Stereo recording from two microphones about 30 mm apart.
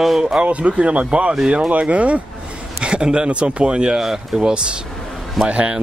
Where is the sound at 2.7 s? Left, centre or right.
Right.